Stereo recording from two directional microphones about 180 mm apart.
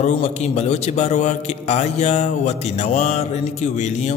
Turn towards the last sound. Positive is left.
turn(degrees=40)  # may be behind; listen again after turning